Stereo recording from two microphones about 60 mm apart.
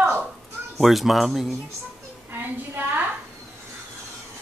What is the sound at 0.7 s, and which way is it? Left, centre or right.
Speech, centre.